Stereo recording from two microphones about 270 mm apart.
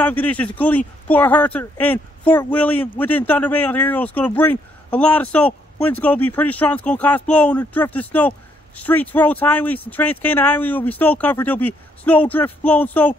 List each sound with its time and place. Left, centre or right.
0.0 s speech: centre